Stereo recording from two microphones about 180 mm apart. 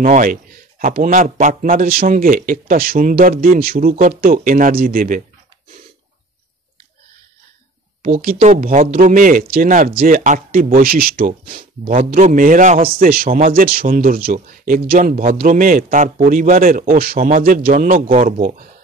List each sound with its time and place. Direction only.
0.0 s a man's voice: 50° right (ahead or behind)
8.0 s a man's voice: 50° right (ahead or behind)